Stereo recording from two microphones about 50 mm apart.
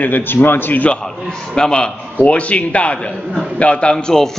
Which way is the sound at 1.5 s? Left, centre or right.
Centre.